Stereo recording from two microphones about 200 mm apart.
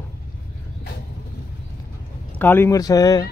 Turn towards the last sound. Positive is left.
turn(degrees=20)  # may be behind; listen again after turning